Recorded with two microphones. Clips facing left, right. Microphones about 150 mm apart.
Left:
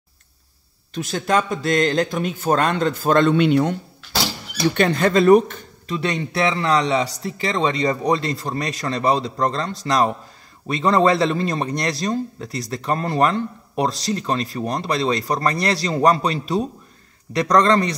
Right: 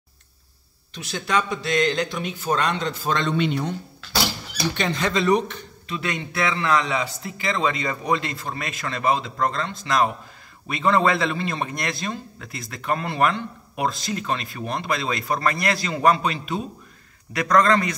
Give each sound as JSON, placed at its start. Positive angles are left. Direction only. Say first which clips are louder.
{"t": 0.9, "sound": "a man's voice", "louder": "left 4 dB", "side_deg": 45}
{"t": 4.7, "sound": "a man's voice", "louder": "left 7 dB", "side_deg": 55}